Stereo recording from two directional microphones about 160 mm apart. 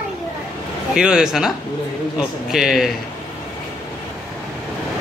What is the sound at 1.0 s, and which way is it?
Speech, 5° right (ahead or behind).